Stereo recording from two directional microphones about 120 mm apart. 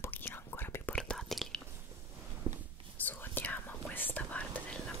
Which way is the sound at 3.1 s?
15° left (ahead or behind).